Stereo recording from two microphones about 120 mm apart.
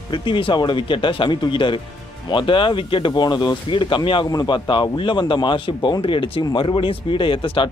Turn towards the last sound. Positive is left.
turn(degrees=45)  # may be behind; listen again after turning